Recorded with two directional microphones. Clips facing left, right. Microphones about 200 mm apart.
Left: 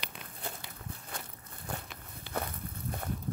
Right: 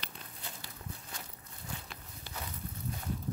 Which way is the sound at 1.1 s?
55° left (ahead or behind).